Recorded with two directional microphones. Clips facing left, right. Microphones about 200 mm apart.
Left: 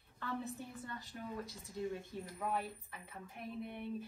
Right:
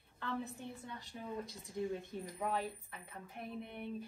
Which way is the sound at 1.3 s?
20° right (ahead or behind).